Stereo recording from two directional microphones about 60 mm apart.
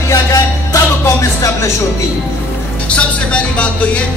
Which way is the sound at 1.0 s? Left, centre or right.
Left.